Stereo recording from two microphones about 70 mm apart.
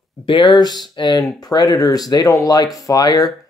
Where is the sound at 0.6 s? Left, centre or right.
Left.